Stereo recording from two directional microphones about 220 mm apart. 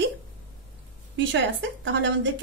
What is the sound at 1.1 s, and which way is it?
Speech, 55° right (ahead or behind).